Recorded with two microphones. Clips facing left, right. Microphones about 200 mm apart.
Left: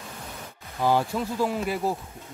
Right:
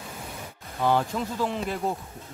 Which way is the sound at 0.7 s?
5° left (ahead or behind).